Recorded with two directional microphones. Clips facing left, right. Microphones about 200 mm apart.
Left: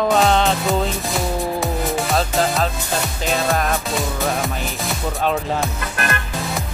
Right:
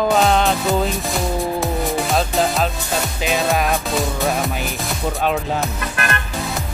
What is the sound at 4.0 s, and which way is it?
Music, centre (ahead or behind).